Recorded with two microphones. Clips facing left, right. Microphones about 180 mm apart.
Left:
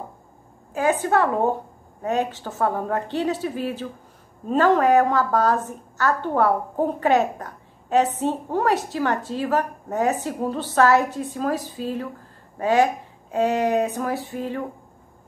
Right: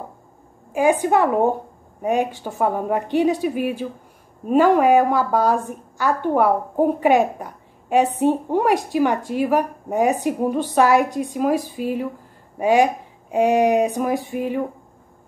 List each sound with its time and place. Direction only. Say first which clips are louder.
0.7 s a woman's voice: right 3 dB; 15° right (ahead or behind)